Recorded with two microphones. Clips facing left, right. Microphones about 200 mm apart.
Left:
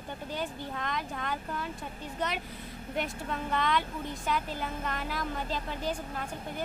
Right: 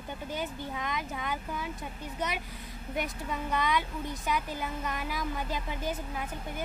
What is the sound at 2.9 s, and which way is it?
A woman's voice, 10° right (ahead or behind).